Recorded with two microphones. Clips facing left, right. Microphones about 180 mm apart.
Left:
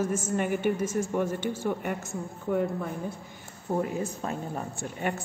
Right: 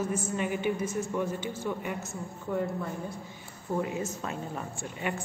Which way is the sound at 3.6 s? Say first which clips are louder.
Left 2 dB; 40° left (ahead or behind).